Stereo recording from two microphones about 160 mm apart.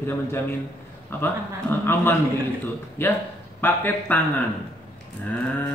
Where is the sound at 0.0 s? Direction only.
15° left (ahead or behind).